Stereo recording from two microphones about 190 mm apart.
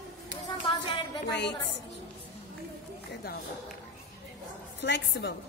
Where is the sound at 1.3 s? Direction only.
65° left (ahead or behind).